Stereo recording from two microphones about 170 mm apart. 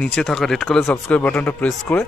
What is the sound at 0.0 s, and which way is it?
Speech, 5° left (ahead or behind).